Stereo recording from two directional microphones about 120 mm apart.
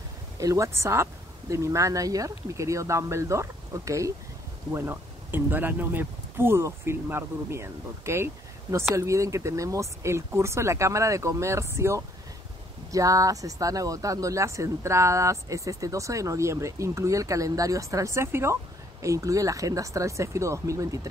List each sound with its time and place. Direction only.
0.4 s speech: 25° right (ahead or behind)